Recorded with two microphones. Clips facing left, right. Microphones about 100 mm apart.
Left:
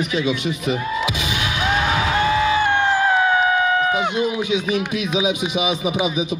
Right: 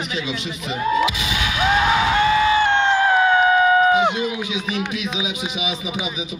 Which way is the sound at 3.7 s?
15° right (ahead or behind).